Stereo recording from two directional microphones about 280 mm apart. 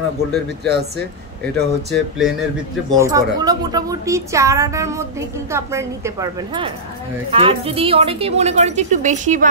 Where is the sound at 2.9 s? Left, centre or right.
Centre.